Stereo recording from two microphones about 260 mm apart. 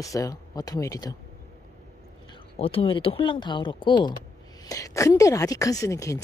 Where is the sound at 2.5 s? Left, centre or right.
Left.